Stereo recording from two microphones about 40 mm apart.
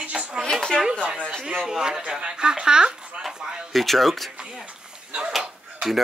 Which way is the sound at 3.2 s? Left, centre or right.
Centre.